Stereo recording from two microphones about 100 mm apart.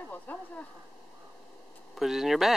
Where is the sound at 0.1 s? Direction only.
15° left (ahead or behind).